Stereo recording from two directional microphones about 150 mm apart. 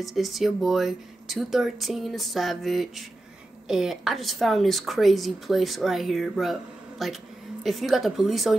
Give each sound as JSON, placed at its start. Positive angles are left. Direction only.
{"t": 0.0, "sound": "a woman's voice", "side_deg": 0}